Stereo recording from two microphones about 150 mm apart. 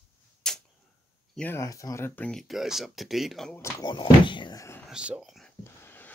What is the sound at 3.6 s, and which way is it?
Speech, 25° left (ahead or behind).